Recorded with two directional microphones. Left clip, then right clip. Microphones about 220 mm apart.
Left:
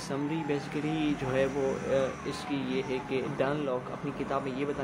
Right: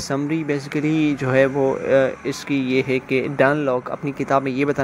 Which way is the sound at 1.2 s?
40° right (ahead or behind).